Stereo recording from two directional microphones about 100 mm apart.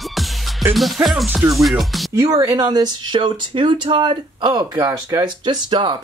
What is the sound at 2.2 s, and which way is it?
Speech, 35° right (ahead or behind).